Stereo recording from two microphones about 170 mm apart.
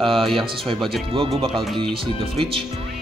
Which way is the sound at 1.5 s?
Centre (ahead or behind).